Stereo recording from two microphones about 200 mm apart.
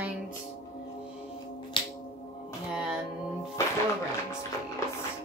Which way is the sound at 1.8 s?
25° left (ahead or behind).